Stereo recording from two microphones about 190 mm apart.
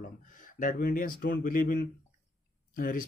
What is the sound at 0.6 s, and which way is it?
Speech, 50° left (ahead or behind).